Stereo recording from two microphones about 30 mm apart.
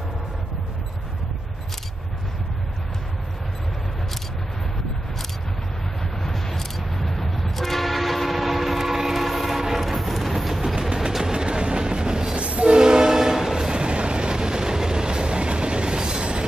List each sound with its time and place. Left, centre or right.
6.2 s train: centre
11.3 s train: right